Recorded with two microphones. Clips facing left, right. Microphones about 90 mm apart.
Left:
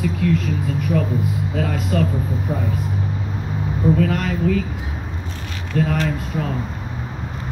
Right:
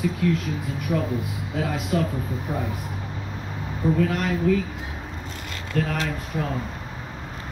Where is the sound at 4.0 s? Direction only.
5° right (ahead or behind).